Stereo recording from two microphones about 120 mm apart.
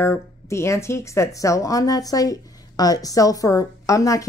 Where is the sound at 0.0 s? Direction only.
20° left (ahead or behind).